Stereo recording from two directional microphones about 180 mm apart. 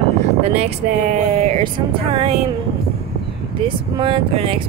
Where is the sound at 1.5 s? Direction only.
35° right (ahead or behind).